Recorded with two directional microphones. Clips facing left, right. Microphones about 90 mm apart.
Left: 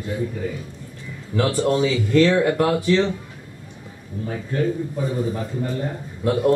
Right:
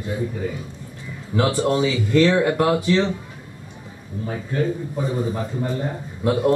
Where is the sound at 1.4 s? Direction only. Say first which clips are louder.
Even; 20° right (ahead or behind).